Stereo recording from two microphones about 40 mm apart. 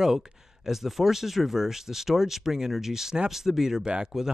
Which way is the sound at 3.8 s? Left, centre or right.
Right.